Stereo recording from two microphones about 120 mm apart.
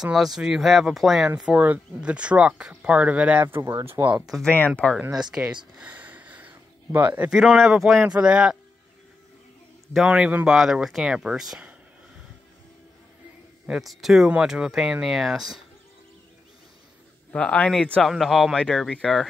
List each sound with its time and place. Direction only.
0.0 s speech: centre (ahead or behind)
1.4 s speech: 10° right (ahead or behind)
4.5 s speech: 10° left (ahead or behind)
5.3 s speech: 10° right (ahead or behind)
10.0 s speech: 10° right (ahead or behind)
13.7 s speech: centre (ahead or behind)
17.3 s speech: 10° left (ahead or behind)